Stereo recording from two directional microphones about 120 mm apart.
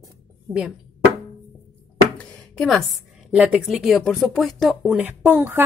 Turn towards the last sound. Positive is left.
turn(degrees=-20)  # may be behind; listen again after turning